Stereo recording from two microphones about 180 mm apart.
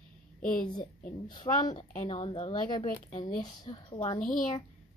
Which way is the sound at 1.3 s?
25° left (ahead or behind).